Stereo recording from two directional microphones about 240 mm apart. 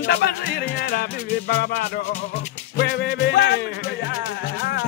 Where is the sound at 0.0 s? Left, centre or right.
Left.